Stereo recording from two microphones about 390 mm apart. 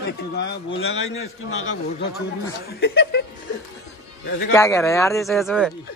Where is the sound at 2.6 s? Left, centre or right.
Left.